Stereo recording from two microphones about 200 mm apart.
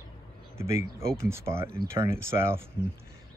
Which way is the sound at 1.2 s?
15° right (ahead or behind).